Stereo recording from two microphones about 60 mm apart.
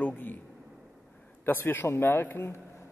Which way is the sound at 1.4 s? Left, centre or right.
Left.